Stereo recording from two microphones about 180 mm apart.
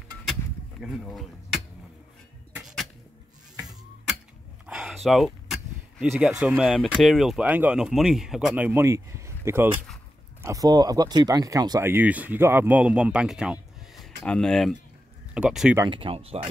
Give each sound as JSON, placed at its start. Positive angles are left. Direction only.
{"t": 0.3, "sound": "a sound", "side_deg": 0}
{"t": 4.6, "sound": "speech", "side_deg": -5}
{"t": 15.8, "sound": "speech", "side_deg": -30}